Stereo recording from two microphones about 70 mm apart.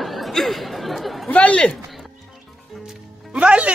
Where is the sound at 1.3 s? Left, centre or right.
Centre.